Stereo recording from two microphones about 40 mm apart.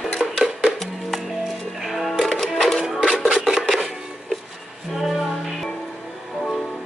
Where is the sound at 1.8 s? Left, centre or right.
Centre.